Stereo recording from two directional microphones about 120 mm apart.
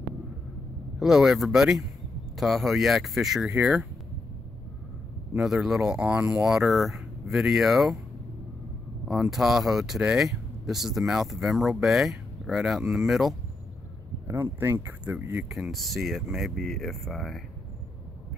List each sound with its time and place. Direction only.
0.9 s speech: 5° right (ahead or behind)
5.3 s speech: 5° right (ahead or behind)
9.0 s speech: centre (ahead or behind)
14.2 s speech: 25° right (ahead or behind)
15.5 s speech: centre (ahead or behind)